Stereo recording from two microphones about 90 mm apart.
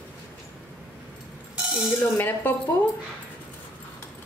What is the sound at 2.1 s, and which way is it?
Speech, 20° left (ahead or behind).